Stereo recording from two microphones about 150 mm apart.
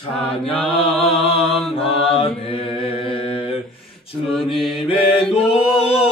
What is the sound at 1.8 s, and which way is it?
Mantra, 40° left (ahead or behind).